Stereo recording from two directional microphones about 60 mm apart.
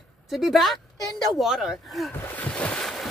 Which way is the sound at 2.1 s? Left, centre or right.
Left.